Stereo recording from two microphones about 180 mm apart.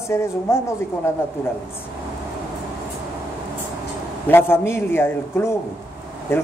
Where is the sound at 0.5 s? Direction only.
15° left (ahead or behind).